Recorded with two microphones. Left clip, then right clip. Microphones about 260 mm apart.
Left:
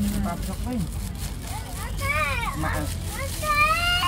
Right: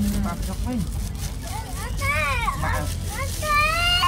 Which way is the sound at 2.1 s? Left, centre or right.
Right.